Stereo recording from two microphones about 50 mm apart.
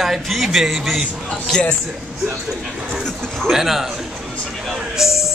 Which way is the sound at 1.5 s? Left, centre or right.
Centre.